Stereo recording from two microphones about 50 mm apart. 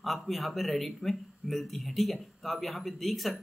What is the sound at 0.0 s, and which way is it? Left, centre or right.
Speech, centre.